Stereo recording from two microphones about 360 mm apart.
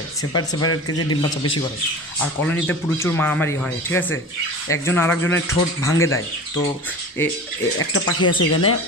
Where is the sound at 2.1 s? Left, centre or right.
Centre.